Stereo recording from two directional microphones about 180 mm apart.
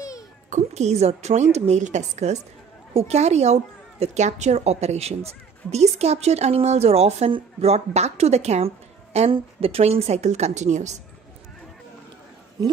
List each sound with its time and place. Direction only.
0.5 s a woman's voice: 40° right (ahead or behind)